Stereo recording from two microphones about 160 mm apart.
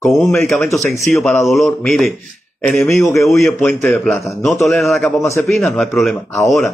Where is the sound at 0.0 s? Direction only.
Centre (ahead or behind).